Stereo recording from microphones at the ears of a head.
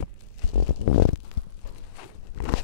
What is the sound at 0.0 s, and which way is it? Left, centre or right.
Stomach rumble, left.